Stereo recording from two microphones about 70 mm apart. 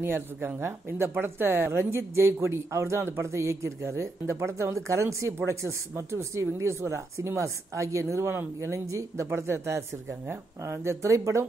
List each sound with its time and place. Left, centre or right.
0.0 s speech: right